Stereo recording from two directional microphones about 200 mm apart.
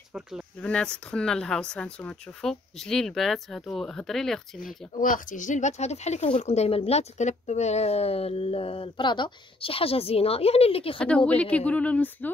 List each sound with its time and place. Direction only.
0.1 s a woman's voice: centre (ahead or behind)
4.6 s speech: 40° left (ahead or behind)
11.0 s speech: 5° left (ahead or behind)